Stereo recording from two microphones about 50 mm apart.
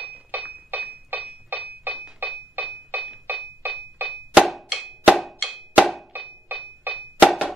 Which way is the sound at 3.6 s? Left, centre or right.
Right.